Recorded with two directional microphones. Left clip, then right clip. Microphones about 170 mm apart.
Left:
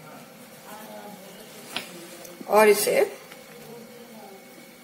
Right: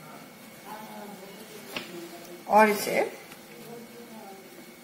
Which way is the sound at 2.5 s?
30° left (ahead or behind).